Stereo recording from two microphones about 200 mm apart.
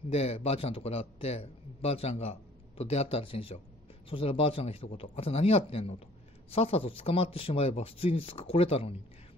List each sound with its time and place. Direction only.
0.1 s a man's voice: 30° left (ahead or behind)